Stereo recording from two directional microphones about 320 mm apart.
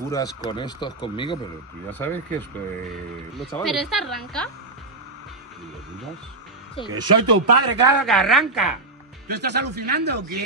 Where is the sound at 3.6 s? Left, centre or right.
Centre.